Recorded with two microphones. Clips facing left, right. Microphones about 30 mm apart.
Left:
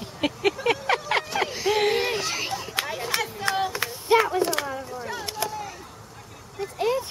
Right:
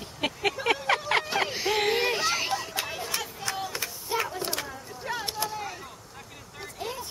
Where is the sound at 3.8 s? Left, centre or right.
Left.